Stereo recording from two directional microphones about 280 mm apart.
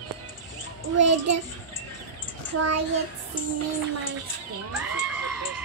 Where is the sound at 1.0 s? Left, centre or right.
Right.